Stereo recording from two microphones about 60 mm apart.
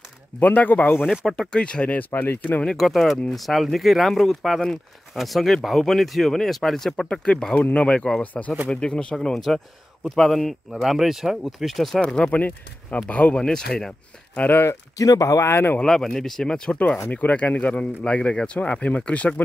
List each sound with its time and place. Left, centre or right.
0.4 s speech: left
1.2 s speech: centre; by 2.6 s left
2.6 s speech: centre
7.1 s speech: centre
10.7 s speech: centre
12.0 s speech: centre
13.4 s speech: centre
14.3 s speech: left
15.0 s speech: left
15.5 s speech: left
15.8 s speech: centre
16.7 s speech: left